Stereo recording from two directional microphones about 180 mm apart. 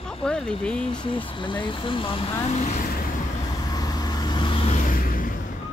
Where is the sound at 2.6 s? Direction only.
40° left (ahead or behind).